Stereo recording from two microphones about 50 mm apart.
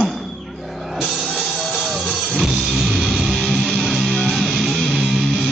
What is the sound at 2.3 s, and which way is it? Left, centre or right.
Music, centre.